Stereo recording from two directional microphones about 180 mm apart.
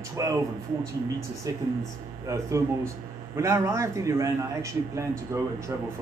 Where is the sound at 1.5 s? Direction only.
20° right (ahead or behind).